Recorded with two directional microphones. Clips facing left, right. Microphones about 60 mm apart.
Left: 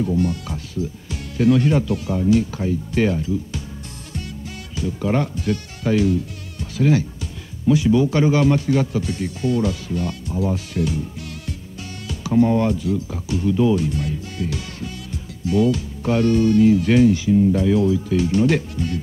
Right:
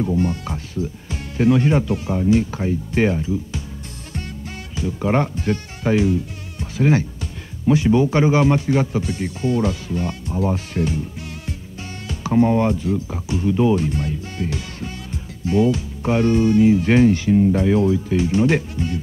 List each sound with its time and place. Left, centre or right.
0.0 s speech: right
4.7 s speech: right
12.1 s speech: right
17.1 s speech: right
17.5 s speech: right